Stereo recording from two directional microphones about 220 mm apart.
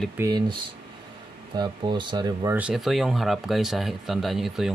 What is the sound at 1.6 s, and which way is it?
Speech, 20° right (ahead or behind).